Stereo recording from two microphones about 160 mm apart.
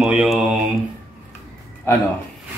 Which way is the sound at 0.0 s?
Centre (ahead or behind).